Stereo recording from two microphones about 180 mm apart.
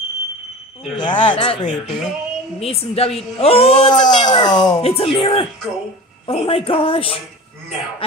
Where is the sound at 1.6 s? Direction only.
45° left (ahead or behind).